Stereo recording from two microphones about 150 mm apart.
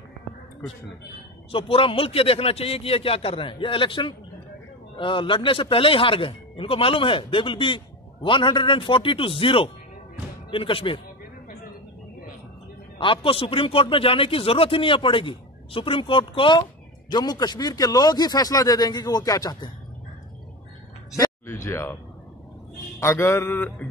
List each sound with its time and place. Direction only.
1.5 s speech: 40° left (ahead or behind)
13.0 s speech: 35° left (ahead or behind)
21.5 s a sound: 15° left (ahead or behind)
22.9 s music: 15° left (ahead or behind)